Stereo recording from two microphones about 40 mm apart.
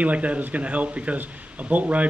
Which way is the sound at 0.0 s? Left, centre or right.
Right.